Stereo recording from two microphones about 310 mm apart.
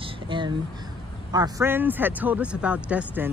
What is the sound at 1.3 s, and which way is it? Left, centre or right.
Speech, centre.